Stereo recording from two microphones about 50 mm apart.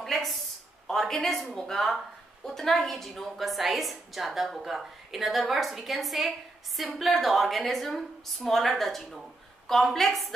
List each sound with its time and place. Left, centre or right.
0.0 s a woman's voice: centre